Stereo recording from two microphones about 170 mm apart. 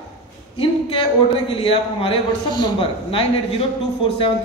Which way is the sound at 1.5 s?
30° left (ahead or behind).